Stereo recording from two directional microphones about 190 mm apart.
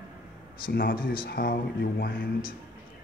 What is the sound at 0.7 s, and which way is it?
Speech, 50° left (ahead or behind).